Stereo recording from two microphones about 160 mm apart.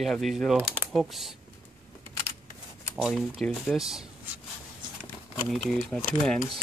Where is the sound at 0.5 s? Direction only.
10° right (ahead or behind).